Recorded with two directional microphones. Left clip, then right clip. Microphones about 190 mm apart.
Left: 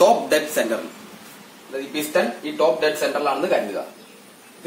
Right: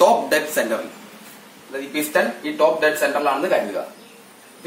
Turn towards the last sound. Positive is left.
turn(degrees=5)  # may be behind; listen again after turning